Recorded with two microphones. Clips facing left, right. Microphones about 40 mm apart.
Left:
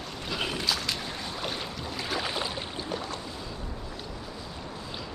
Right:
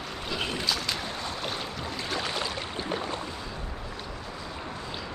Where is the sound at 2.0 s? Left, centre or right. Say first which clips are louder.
Even; centre.